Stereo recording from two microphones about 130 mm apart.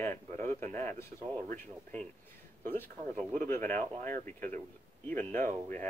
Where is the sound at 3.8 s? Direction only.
90° right.